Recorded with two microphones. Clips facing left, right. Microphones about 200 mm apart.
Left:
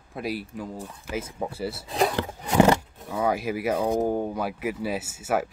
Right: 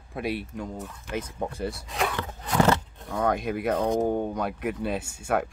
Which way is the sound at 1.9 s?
35° left (ahead or behind).